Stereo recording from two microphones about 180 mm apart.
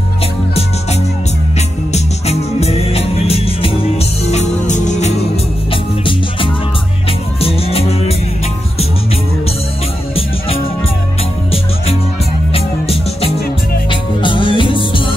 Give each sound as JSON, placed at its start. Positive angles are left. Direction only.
{"t": 1.9, "sound": "music", "side_deg": 35}
{"t": 5.7, "sound": "music", "side_deg": 30}
{"t": 12.5, "sound": "music", "side_deg": 35}